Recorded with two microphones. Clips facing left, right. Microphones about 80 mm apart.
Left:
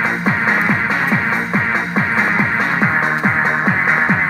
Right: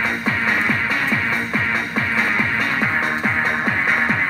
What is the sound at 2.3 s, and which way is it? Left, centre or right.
Music, left.